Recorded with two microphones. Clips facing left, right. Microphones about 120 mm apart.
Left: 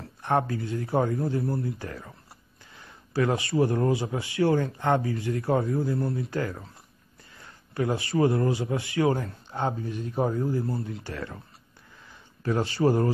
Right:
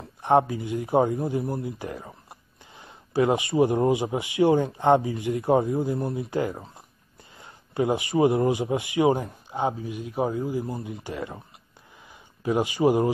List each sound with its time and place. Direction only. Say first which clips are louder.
0.0 s a man's voice: right 5 dB; 20° right (ahead or behind)